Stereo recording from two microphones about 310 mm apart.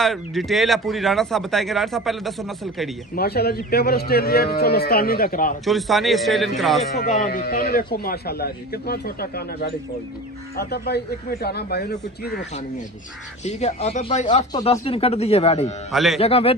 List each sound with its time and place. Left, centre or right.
0.0 s speech: centre
3.2 s speech: left
5.7 s speech: centre
7.0 s speech: left
13.5 s speech: left
15.9 s speech: centre
16.2 s speech: centre